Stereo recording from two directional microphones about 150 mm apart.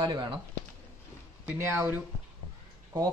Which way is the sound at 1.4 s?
15° right (ahead or behind).